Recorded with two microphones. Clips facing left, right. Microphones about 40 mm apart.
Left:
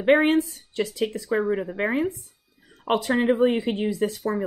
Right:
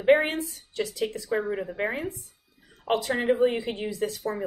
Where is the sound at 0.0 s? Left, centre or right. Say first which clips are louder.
Left 3 dB; left.